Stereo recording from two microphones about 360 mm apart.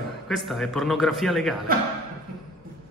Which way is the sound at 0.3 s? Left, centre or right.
Centre.